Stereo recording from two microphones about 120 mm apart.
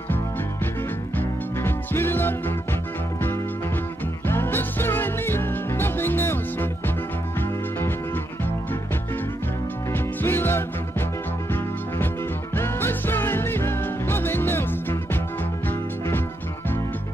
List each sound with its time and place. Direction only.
1.1 s music: 20° left (ahead or behind)
4.3 s music: 20° left (ahead or behind)
9.9 s music: 20° left (ahead or behind)
12.5 s music: 20° left (ahead or behind)